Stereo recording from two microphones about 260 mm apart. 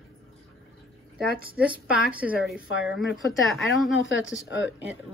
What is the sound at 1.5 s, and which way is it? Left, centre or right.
Speech, centre.